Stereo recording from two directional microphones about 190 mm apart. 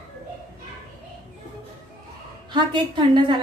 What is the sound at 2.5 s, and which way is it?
Speech, 25° right (ahead or behind).